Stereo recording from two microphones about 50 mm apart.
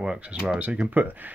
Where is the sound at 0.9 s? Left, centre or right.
Right.